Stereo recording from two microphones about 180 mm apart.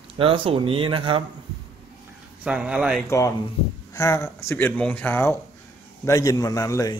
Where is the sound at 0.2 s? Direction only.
30° right (ahead or behind).